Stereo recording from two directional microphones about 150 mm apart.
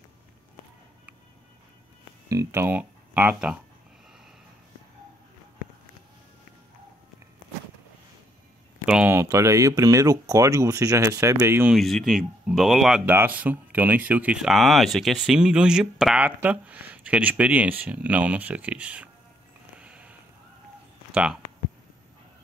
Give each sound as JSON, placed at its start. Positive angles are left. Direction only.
{"t": 2.2, "sound": "speech", "side_deg": -20}
{"t": 8.8, "sound": "a sound", "side_deg": -5}
{"t": 9.1, "sound": "speech", "side_deg": -20}
{"t": 11.7, "sound": "speech", "side_deg": 0}
{"t": 19.8, "sound": "sniff", "side_deg": -10}
{"t": 21.1, "sound": "speech", "side_deg": -5}